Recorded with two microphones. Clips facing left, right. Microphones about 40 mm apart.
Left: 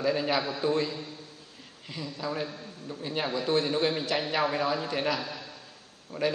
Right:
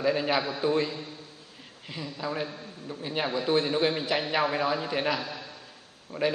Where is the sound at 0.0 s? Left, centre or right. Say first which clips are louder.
Right 1 dB; centre.